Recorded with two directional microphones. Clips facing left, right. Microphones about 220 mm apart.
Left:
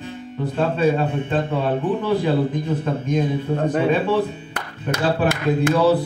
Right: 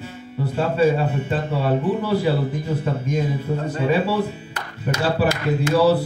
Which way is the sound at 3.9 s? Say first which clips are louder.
Left 1 dB; 10° right (ahead or behind).